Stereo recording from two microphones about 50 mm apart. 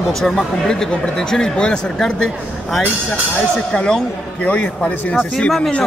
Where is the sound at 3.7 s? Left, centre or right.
Centre.